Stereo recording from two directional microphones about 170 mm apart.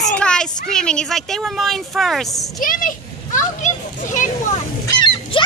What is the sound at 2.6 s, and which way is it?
Children playing, 50° left (ahead or behind).